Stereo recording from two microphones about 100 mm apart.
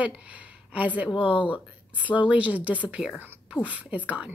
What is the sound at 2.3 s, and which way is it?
A woman's voice, 15° right (ahead or behind).